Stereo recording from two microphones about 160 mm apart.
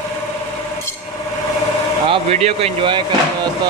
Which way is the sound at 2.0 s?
40° right (ahead or behind).